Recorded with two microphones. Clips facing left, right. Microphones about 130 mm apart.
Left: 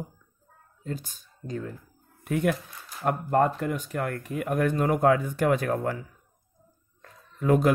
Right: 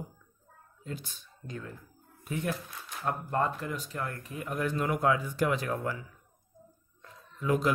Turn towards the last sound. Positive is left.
turn(degrees=50)  # may be behind; listen again after turning